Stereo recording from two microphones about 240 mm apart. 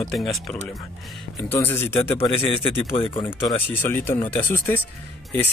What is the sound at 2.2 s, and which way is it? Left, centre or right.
Speech, left.